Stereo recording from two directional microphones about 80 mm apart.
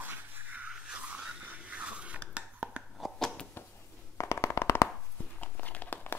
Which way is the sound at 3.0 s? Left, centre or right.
Centre.